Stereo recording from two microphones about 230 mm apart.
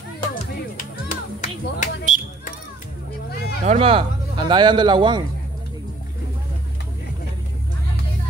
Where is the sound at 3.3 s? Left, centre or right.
Left.